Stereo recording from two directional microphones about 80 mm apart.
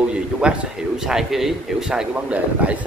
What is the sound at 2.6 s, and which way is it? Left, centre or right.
Speech, centre.